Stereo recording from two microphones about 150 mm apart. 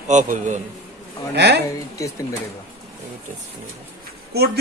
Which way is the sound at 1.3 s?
90° right.